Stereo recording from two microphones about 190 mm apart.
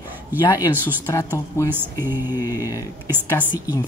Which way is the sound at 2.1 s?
20° left (ahead or behind).